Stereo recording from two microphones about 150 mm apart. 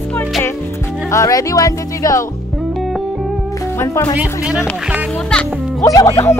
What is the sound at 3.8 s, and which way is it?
Speech, 15° left (ahead or behind).